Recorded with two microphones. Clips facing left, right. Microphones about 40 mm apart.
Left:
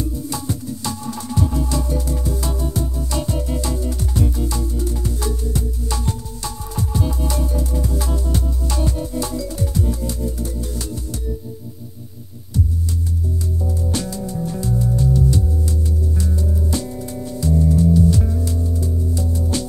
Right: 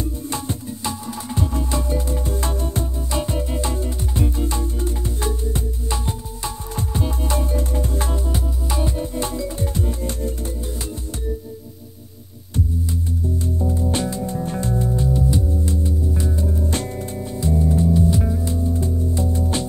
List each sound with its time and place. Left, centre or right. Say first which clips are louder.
0.0 s music: left 1 dB; right
3.1 s music: even; right
8.3 s music: left 1 dB; centre; by 10.5 s right
13.7 s music: right 2 dB; right
15.0 s music: left 4 dB; right
16.7 s music: left 1 dB; right
17.4 s music: left 2 dB; right